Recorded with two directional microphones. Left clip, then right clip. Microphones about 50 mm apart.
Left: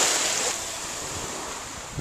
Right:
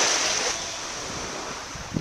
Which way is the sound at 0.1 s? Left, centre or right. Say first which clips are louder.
Right 1 dB; right.